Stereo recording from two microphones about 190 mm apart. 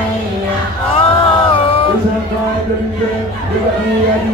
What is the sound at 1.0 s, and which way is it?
Music, 30° left (ahead or behind).